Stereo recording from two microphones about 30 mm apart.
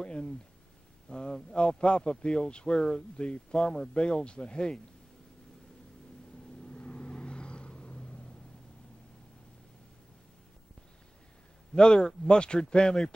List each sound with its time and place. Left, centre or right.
0.0 s speech: left
6.6 s vehicle: left
11.7 s speech: left